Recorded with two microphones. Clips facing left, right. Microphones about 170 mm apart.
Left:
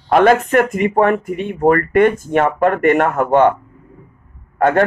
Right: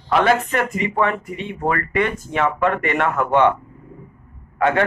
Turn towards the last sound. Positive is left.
turn(degrees=45)  # may be behind; listen again after turning